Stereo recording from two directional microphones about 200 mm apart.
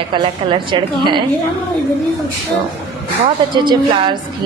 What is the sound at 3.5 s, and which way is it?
Speech, 25° right (ahead or behind).